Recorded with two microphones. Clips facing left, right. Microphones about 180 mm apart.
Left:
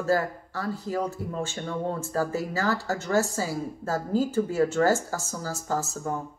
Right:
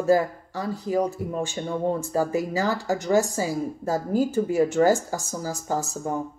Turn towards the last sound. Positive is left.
turn(degrees=-15)  # may be behind; listen again after turning